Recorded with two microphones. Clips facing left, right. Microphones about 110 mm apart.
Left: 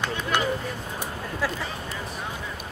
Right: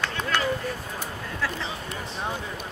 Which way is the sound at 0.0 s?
20° left (ahead or behind).